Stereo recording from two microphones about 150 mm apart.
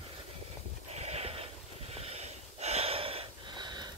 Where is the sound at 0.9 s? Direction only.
45° right (ahead or behind).